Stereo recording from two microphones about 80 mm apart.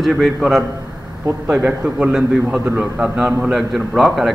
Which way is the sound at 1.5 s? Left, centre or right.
Centre.